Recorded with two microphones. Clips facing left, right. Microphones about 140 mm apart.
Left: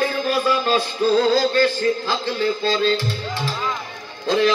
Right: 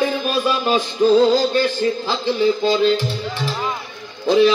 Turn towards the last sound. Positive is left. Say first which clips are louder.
# right 4 dB
turn(degrees=-15)  # may be behind; listen again after turning